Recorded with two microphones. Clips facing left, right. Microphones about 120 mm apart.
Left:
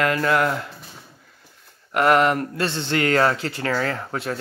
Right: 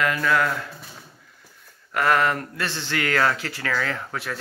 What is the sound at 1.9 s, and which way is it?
Speech, 25° left (ahead or behind).